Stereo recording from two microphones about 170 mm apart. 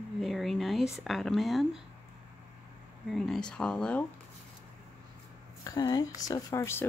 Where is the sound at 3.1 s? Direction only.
Centre (ahead or behind).